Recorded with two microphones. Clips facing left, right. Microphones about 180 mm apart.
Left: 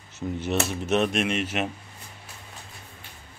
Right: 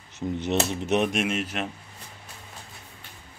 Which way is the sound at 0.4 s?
20° right (ahead or behind).